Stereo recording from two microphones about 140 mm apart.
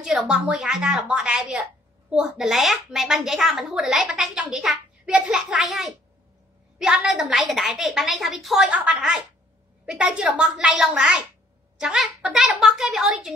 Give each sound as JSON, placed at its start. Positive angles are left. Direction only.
{"t": 0.0, "sound": "a child's voice", "side_deg": -5}